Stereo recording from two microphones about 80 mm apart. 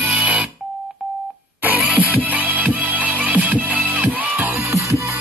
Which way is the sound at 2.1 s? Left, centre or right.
Right.